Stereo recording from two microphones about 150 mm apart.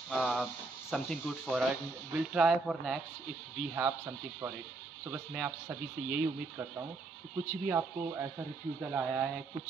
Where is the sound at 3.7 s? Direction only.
15° right (ahead or behind).